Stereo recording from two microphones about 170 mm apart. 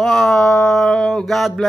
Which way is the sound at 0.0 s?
Centre (ahead or behind).